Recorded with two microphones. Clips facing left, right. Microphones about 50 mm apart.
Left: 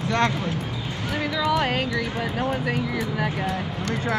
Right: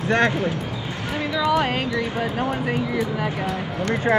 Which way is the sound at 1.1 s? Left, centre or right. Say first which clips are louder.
Right 2 dB; right.